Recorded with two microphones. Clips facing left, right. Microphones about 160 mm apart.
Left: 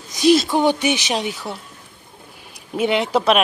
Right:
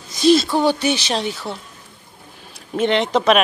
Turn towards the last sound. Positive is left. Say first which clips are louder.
# right 1 dB
turn(degrees=5)  # may be behind; listen again after turning